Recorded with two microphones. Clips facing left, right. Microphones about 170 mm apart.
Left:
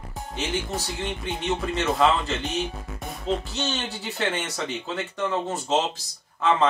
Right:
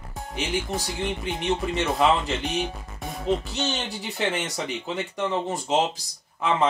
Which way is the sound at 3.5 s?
15° right (ahead or behind).